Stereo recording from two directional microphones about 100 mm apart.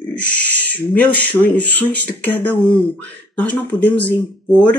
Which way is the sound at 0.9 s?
15° left (ahead or behind).